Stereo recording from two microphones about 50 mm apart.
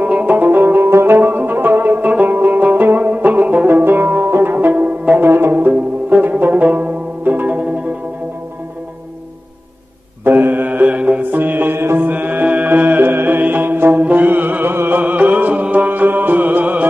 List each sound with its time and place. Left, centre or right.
0.0 s music: right
0.8 s music: right
1.1 s music: right
3.6 s music: right
5.2 s music: right
5.5 s music: right
10.2 s mantra: right
11.3 s music: right